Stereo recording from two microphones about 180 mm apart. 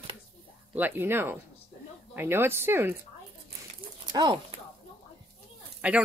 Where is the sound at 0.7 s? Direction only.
10° right (ahead or behind).